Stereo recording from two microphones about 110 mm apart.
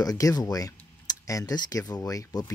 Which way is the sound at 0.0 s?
35° left (ahead or behind).